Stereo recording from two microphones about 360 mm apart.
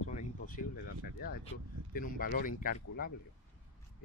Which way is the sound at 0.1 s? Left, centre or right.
Left.